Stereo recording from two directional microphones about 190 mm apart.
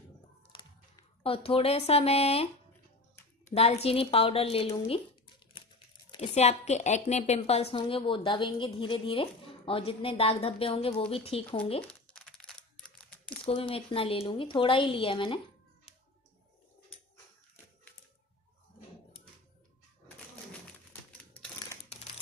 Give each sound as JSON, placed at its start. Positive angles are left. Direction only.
{"t": 0.5, "sound": "a woman's voice", "side_deg": 25}
{"t": 6.0, "sound": "a woman's voice", "side_deg": 30}
{"t": 11.9, "sound": "crumpling", "side_deg": 5}
{"t": 13.5, "sound": "a woman's voice", "side_deg": 30}